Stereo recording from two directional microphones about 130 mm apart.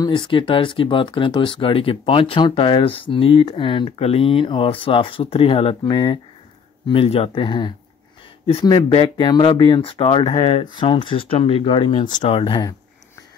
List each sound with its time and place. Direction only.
0.0 s speech: 40° left (ahead or behind)
12.4 s speech: 35° left (ahead or behind)